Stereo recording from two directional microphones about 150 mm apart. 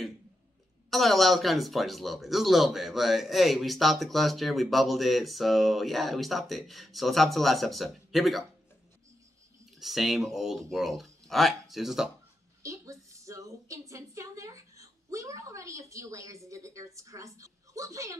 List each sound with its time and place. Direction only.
0.8 s speech: centre (ahead or behind)
9.8 s speech: centre (ahead or behind)
12.6 s a sound: 20° right (ahead or behind)